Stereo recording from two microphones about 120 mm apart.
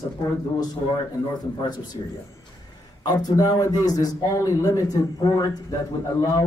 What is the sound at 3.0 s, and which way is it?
Speech, 35° left (ahead or behind).